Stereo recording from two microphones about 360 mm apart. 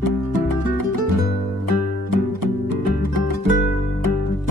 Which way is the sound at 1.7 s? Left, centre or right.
Right.